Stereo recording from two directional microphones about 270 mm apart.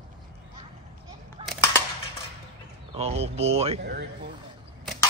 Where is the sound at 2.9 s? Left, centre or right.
Right.